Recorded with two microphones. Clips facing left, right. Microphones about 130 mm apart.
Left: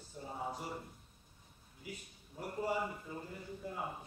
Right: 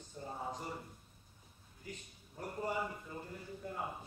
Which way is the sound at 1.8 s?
10° left (ahead or behind).